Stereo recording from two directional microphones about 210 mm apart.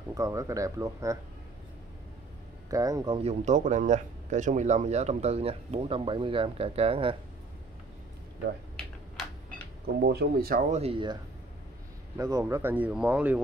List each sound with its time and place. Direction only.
0.1 s speech: 15° right (ahead or behind)
2.7 s speech: 15° right (ahead or behind)
3.3 s speech: 35° right (ahead or behind)
10.0 s speech: 50° right (ahead or behind)
10.8 s speech: 25° right (ahead or behind)
12.2 s speech: 15° right (ahead or behind)